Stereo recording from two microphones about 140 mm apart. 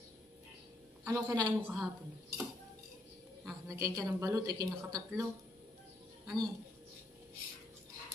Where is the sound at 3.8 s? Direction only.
25° right (ahead or behind).